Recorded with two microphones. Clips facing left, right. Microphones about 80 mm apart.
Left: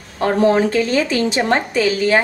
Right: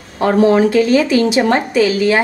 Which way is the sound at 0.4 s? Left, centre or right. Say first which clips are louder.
Right 4 dB; left.